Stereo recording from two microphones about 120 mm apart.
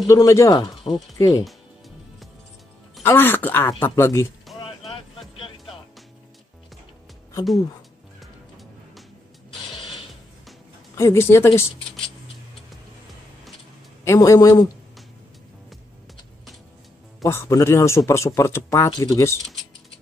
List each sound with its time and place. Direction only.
0.0 s speech: 25° left (ahead or behind)
3.0 s speech: 15° left (ahead or behind)
11.0 s speech: 20° left (ahead or behind)
14.0 s speech: 25° left (ahead or behind)
17.2 s speech: 25° left (ahead or behind)